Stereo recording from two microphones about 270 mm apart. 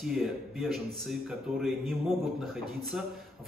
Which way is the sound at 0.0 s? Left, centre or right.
Centre.